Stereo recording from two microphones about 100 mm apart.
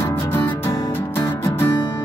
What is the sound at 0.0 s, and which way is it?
Music, 25° left (ahead or behind).